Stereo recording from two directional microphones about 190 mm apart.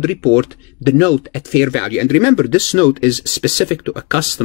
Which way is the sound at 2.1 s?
35° left (ahead or behind).